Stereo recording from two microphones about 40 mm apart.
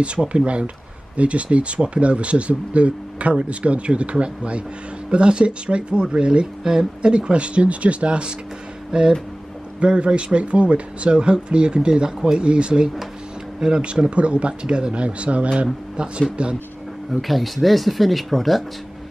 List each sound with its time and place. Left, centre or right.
0.0 s speech: right
17.1 s speech: centre